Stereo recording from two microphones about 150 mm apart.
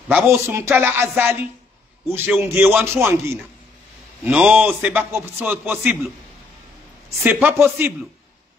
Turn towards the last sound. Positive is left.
turn(degrees=-15)  # may be behind; listen again after turning